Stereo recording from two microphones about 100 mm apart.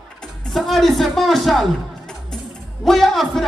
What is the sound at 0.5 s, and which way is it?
A man's voice, centre (ahead or behind).